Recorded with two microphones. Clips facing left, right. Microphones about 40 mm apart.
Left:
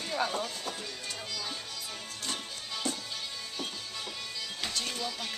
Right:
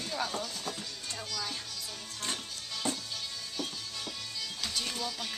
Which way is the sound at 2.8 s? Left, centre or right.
Right.